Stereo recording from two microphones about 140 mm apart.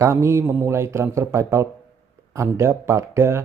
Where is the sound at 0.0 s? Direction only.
20° right (ahead or behind).